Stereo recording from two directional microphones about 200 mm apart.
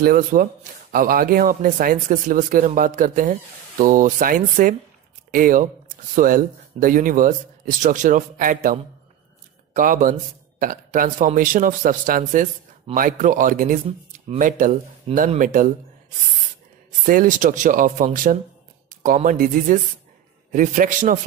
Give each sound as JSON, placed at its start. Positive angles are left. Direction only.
{"t": 0.0, "sound": "a man's voice", "side_deg": -45}
{"t": 9.8, "sound": "a man's voice", "side_deg": -40}
{"t": 17.0, "sound": "speech", "side_deg": -45}